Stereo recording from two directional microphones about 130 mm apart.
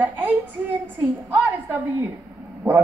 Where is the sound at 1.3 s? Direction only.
15° right (ahead or behind).